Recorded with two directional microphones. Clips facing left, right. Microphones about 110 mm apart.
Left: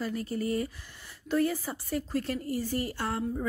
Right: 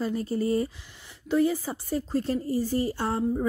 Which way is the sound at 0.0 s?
30° right (ahead or behind).